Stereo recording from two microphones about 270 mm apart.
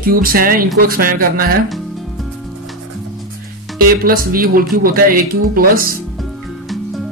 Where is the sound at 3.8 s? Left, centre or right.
Right.